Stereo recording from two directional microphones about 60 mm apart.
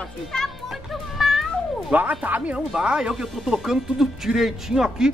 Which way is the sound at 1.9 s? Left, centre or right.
Right.